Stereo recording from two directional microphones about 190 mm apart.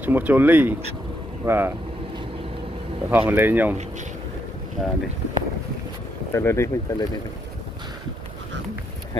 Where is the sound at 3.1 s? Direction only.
10° right (ahead or behind).